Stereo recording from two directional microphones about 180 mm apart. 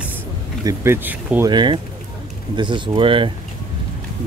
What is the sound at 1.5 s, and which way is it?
Speech, 25° right (ahead or behind).